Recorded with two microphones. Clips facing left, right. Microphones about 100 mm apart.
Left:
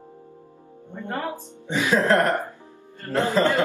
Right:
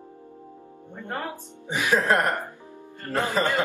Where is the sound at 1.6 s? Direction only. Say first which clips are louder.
Left 2 dB; 15° right (ahead or behind).